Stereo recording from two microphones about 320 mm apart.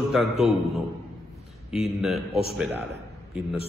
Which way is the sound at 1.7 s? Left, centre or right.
Centre.